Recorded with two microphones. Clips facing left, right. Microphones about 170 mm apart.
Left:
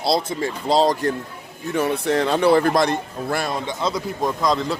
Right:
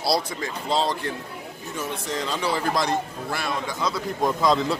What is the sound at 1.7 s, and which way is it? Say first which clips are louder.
A man's voice: left 10 dB; 65° left (ahead or behind).